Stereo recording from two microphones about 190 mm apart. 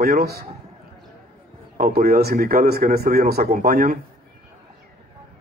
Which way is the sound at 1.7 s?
50° right (ahead or behind).